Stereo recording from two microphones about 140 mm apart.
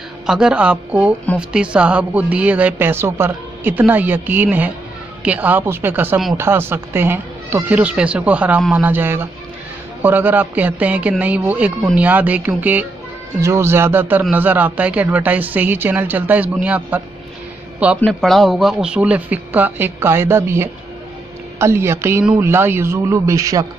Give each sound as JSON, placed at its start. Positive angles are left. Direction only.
{"t": 0.3, "sound": "speech", "side_deg": -5}
{"t": 18.0, "sound": "speech", "side_deg": 0}